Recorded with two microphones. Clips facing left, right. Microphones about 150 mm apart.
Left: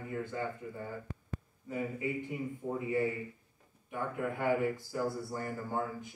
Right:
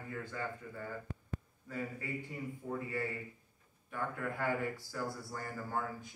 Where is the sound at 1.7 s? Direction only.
15° left (ahead or behind).